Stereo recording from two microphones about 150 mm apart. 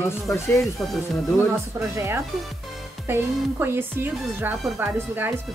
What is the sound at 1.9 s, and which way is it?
Speech, 20° right (ahead or behind).